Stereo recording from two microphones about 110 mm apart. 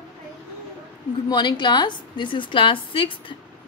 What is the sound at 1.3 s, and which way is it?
A woman's voice, 45° left (ahead or behind).